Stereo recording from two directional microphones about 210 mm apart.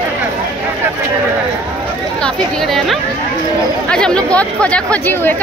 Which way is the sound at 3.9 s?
5° left (ahead or behind).